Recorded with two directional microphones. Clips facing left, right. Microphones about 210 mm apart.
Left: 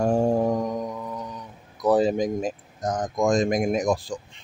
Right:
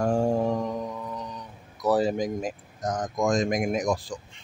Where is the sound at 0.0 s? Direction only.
20° left (ahead or behind).